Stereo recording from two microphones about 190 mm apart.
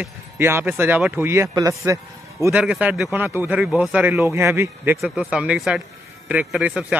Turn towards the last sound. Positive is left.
turn(degrees=-5)  # may be behind; listen again after turning